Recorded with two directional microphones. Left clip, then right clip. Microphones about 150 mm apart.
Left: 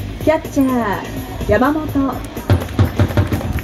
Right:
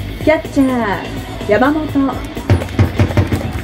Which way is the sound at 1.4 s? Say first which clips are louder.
Right 2 dB; 10° right (ahead or behind).